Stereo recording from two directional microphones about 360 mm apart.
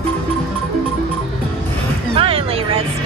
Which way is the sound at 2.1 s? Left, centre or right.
Centre.